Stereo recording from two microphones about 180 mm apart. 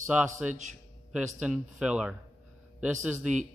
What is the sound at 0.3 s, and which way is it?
Speech, 45° right (ahead or behind).